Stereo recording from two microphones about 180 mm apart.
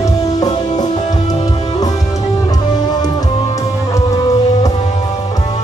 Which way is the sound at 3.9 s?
20° left (ahead or behind).